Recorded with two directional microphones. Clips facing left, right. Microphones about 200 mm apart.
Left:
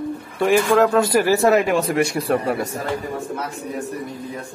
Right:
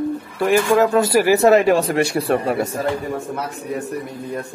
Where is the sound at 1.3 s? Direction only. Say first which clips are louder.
Right 4 dB; 20° right (ahead or behind).